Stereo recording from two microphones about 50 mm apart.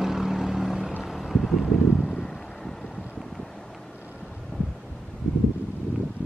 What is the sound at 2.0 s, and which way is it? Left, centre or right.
Vehicle, centre.